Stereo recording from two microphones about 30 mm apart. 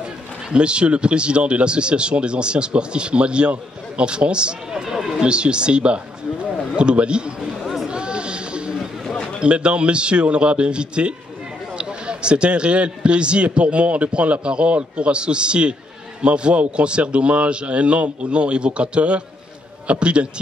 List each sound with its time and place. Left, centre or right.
0.5 s speech: right
4.8 s run: centre
5.2 s a man's voice: right
7.9 s a sound: right
9.4 s speech: right